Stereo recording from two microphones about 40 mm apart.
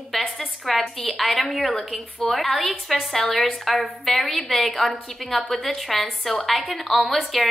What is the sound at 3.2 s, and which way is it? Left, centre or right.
Speech, left.